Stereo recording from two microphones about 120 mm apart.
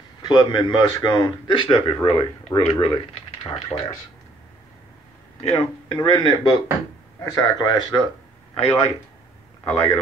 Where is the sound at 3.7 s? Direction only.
30° left (ahead or behind).